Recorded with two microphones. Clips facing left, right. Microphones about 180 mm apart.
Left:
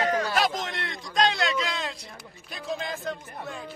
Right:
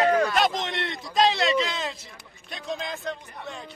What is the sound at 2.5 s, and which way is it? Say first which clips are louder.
Speech: even; centre (ahead or behind).